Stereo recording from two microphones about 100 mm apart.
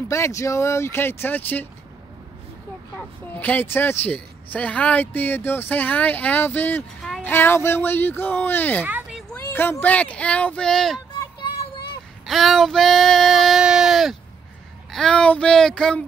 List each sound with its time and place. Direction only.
0.1 s speech: 30° left (ahead or behind)
3.3 s speech: 20° left (ahead or behind); by 11.0 s 5° left (ahead or behind)
12.3 s female singing: centre (ahead or behind)
14.9 s speech: 5° left (ahead or behind)